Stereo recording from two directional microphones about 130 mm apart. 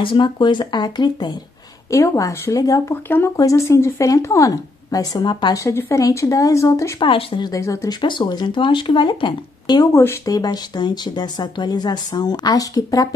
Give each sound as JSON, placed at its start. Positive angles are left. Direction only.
{"t": 0.0, "sound": "speech", "side_deg": 40}
{"t": 5.6, "sound": "speech", "side_deg": 20}
{"t": 7.0, "sound": "speech", "side_deg": 45}
{"t": 8.0, "sound": "speech", "side_deg": 35}